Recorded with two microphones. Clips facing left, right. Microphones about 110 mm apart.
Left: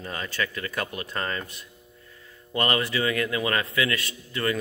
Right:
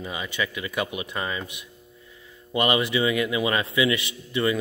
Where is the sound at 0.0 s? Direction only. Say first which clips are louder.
Right 1 dB; 10° right (ahead or behind).